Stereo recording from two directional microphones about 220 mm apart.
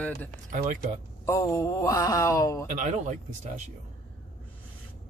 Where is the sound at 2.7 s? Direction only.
35° right (ahead or behind).